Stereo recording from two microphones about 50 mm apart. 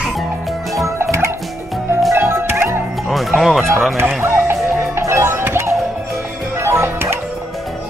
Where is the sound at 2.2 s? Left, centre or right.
Right.